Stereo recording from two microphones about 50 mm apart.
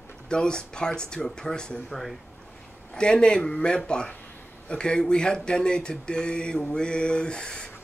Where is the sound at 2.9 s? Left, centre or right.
Centre.